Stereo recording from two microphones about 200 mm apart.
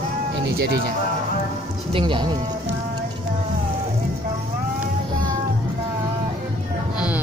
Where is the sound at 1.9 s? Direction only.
25° right (ahead or behind).